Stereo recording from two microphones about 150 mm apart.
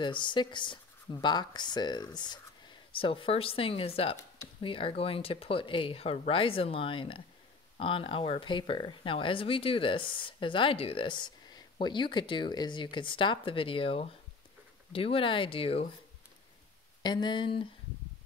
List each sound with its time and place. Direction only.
0.0 s speech: 30° left (ahead or behind)
17.0 s speech: 30° left (ahead or behind)